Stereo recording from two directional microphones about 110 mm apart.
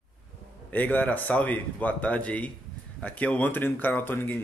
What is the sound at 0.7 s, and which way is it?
Speech, 15° left (ahead or behind).